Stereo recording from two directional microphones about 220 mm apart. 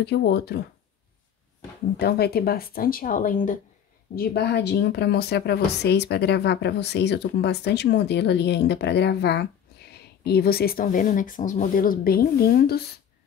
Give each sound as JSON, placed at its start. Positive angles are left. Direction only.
{"t": 0.0, "sound": "speech", "side_deg": 50}
{"t": 2.0, "sound": "speech", "side_deg": 45}